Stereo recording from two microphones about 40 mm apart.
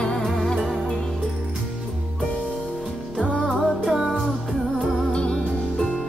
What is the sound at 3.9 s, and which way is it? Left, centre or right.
Music, centre.